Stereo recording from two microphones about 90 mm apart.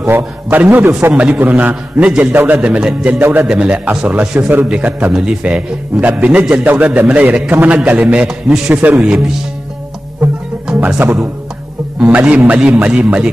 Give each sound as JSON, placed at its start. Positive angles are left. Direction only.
{"t": 0.0, "sound": "a man's voice", "side_deg": -20}
{"t": 3.2, "sound": "a man's voice", "side_deg": -25}
{"t": 3.4, "sound": "a man's voice", "side_deg": -10}
{"t": 10.7, "sound": "a man's voice", "side_deg": -15}